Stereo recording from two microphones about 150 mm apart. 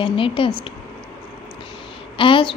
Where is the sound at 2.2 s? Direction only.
35° left (ahead or behind).